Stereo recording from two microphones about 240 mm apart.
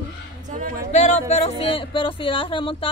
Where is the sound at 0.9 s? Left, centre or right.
Left.